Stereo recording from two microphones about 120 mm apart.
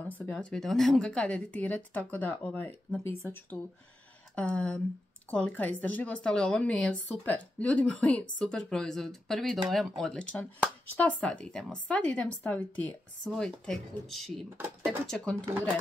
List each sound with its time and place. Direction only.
0.3 s a woman's voice: 5° left (ahead or behind)